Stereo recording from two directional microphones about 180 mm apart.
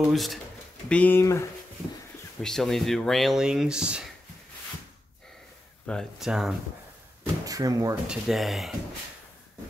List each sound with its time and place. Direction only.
0.0 s speech: centre (ahead or behind)
2.4 s speech: centre (ahead or behind)
5.9 s speech: centre (ahead or behind)
7.4 s speech: 20° right (ahead or behind)
8.1 s speech: centre (ahead or behind)